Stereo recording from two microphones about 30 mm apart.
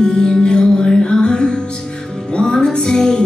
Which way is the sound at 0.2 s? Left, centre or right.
Centre.